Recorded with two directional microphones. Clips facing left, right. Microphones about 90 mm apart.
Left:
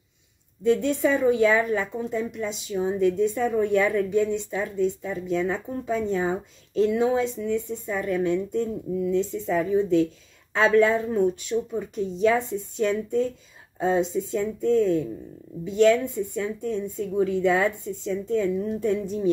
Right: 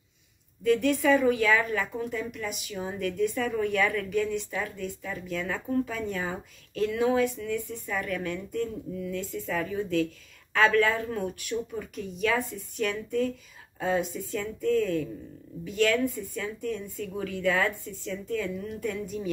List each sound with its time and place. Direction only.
0.7 s a woman's voice: 25° left (ahead or behind)